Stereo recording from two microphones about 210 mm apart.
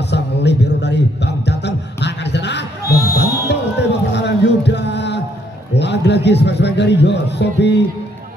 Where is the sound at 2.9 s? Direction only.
15° left (ahead or behind).